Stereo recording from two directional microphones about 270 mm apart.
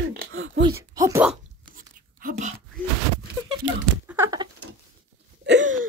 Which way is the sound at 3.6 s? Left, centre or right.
Right.